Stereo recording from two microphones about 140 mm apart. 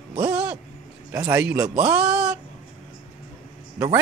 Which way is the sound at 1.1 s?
20° right (ahead or behind).